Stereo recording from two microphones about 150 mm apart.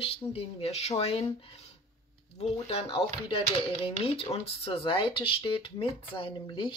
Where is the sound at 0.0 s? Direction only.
40° left (ahead or behind).